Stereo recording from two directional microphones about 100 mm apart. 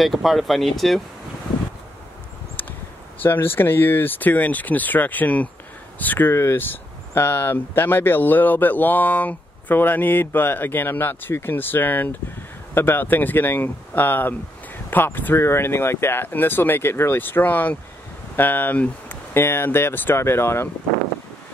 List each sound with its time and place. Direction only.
0.0 s speech: centre (ahead or behind)
3.2 s speech: 20° left (ahead or behind)